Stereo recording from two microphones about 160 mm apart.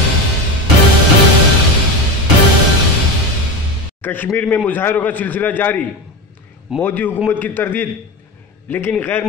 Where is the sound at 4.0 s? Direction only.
10° left (ahead or behind).